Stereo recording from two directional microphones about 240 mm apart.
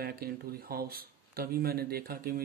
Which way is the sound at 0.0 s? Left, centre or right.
Right.